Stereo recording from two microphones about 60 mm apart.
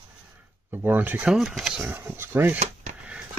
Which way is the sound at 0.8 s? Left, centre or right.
Right.